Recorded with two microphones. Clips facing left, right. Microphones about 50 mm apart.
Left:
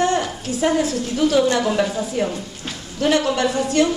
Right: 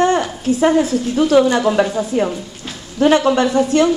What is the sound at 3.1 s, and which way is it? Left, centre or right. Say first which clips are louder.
Speech: right 4 dB; right.